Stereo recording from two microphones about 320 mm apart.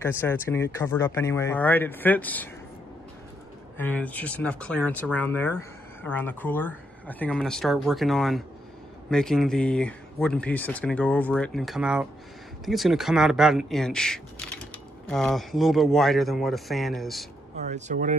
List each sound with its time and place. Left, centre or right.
0.0 s speech: centre
3.7 s speech: centre
17.6 s speech: right